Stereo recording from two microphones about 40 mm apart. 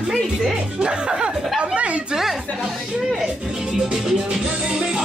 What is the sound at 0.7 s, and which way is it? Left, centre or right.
Speech, right.